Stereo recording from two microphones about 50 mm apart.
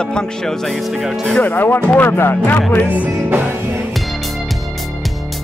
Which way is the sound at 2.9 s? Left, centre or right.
Right.